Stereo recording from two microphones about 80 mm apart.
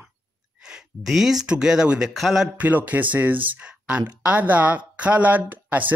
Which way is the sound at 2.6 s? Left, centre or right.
Centre.